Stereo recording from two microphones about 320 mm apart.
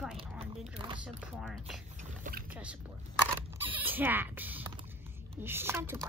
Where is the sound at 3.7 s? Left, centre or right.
Centre.